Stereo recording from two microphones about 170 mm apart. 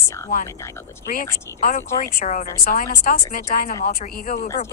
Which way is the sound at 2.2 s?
45° left (ahead or behind).